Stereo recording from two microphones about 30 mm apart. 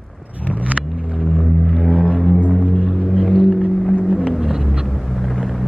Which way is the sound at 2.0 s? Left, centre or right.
Centre.